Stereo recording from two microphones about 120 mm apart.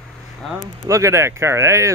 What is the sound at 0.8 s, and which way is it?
Speech, 25° right (ahead or behind).